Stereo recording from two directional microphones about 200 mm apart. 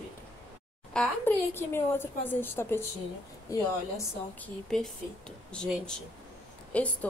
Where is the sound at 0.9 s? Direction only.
10° left (ahead or behind).